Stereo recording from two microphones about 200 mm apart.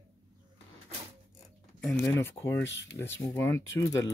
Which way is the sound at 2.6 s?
60° left (ahead or behind).